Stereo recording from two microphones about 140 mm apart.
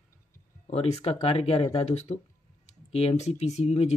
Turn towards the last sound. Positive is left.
turn(degrees=50)  # may be behind; listen again after turning